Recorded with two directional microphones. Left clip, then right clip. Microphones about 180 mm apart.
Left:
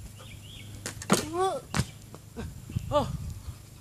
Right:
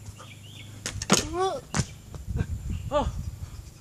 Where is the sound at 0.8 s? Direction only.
10° right (ahead or behind).